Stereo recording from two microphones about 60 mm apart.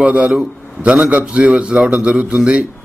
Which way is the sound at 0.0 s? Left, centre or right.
Right.